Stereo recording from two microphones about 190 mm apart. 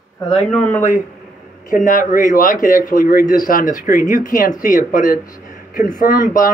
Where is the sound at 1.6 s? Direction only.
45° left (ahead or behind).